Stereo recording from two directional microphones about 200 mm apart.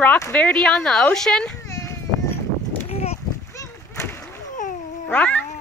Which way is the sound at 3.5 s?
15° left (ahead or behind).